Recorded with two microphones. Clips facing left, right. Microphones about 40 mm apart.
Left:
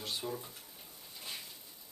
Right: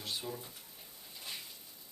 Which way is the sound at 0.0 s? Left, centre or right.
Centre.